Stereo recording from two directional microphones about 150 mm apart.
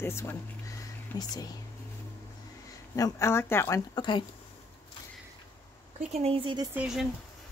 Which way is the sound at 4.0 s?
30° left (ahead or behind).